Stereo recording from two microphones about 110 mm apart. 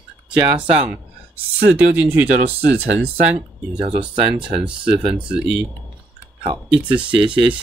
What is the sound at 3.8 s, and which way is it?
Speech, 50° right (ahead or behind).